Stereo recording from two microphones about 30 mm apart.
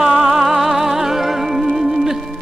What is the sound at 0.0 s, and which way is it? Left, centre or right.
Music, centre.